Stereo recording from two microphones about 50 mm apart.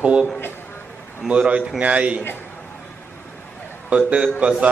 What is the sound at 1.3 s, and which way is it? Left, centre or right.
Speech, right.